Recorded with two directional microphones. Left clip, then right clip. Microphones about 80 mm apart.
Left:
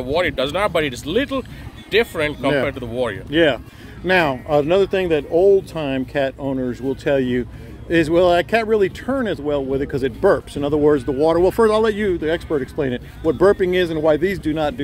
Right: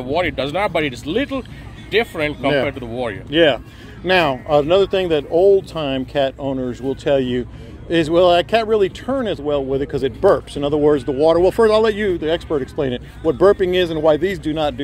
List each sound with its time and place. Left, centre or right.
0.0 s speech: left
2.6 s speech: left
6.6 s speech: left
9.1 s speech: left
11.7 s speech: left
14.2 s speech: left